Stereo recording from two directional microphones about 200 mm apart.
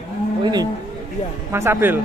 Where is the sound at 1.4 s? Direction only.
15° right (ahead or behind).